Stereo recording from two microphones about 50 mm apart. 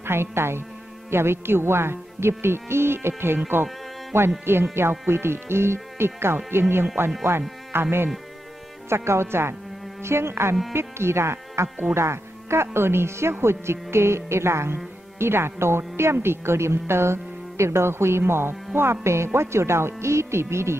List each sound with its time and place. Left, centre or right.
0.0 s speech: right
3.3 s speech: right
4.1 s speech: right
8.8 s speech: right